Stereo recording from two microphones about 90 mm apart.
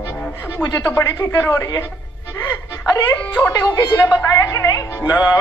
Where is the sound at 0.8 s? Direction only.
30° left (ahead or behind).